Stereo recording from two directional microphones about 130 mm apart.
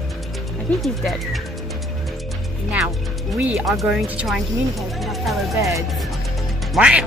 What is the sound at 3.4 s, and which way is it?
Speech, 10° right (ahead or behind).